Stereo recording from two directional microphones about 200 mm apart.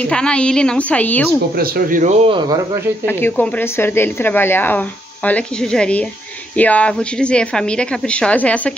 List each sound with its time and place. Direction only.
0.1 s a woman's voice: 5° left (ahead or behind)
1.6 s speech: 40° right (ahead or behind)
2.2 s speech: 20° right (ahead or behind)
3.1 s a woman's voice: 10° left (ahead or behind)